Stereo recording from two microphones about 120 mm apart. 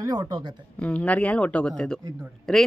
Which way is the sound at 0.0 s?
30° right (ahead or behind).